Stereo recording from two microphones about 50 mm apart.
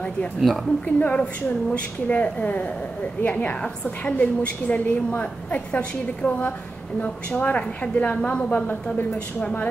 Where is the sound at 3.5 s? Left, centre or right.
Left.